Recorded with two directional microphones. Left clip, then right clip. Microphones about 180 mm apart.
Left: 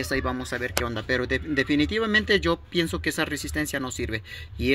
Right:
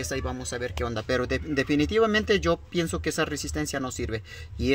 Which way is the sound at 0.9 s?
30° right (ahead or behind).